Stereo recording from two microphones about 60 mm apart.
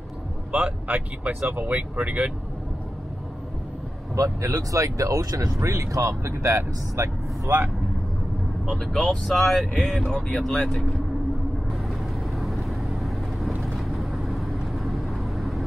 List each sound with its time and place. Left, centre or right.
0.5 s speech: centre
4.1 s speech: right
6.2 s speech: right
8.6 s speech: centre
10.0 s speech: centre
10.4 s speech: centre
12.4 s vehicle: centre